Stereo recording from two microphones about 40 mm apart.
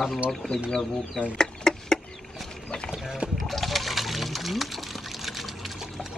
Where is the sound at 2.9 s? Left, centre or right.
Centre.